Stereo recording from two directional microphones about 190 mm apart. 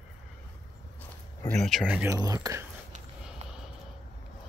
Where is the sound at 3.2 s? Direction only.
5° right (ahead or behind).